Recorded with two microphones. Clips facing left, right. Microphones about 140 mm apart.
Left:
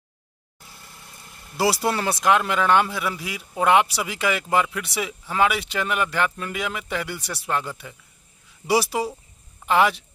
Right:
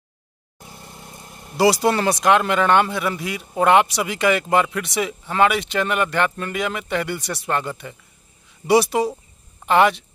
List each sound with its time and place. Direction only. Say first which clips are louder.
0.6 s vehicle: right 7 dB; 25° right (ahead or behind)
1.6 s speech: right 5 dB; centre (ahead or behind)